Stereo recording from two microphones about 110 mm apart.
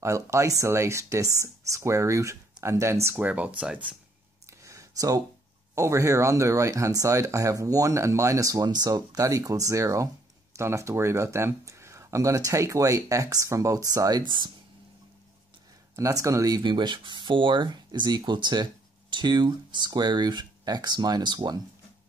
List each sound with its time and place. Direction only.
0.0 s speech: 25° right (ahead or behind); by 3.9 s 10° right (ahead or behind)
4.5 s a sound: 30° right (ahead or behind)
5.8 s speech: 25° right (ahead or behind)
16.0 s speech: 30° right (ahead or behind)